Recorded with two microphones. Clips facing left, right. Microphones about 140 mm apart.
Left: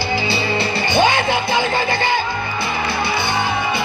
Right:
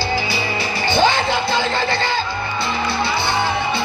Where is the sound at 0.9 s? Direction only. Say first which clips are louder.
Even; 15° left (ahead or behind).